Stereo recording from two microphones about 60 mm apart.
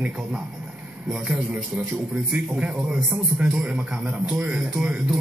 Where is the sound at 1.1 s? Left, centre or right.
Centre.